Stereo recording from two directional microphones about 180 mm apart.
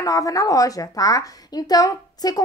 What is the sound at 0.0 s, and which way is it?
A woman's voice, 20° left (ahead or behind).